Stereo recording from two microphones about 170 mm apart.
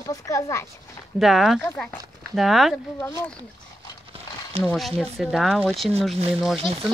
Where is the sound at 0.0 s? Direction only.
20° left (ahead or behind).